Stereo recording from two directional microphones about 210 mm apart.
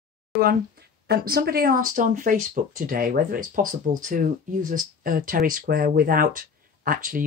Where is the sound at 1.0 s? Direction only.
45° right (ahead or behind).